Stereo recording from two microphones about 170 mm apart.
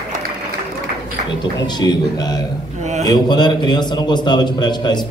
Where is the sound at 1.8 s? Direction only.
20° left (ahead or behind).